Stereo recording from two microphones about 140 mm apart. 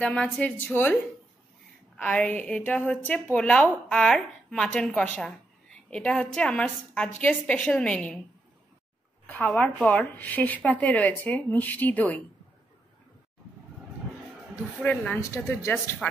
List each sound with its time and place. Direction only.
0.0 s a woman's voice: 10° left (ahead or behind)
2.0 s a woman's voice: 10° left (ahead or behind)
9.3 s a woman's voice: 10° left (ahead or behind)
14.8 s a woman's voice: 10° left (ahead or behind)
15.1 s speech: 20° left (ahead or behind)